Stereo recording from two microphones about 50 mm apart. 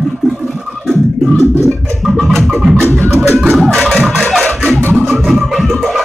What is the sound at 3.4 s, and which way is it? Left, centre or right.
Music, centre.